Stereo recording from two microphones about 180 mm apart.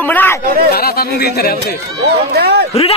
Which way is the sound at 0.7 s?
60° left (ahead or behind).